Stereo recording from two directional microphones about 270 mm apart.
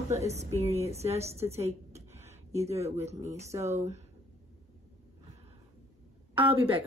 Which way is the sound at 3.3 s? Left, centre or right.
Centre.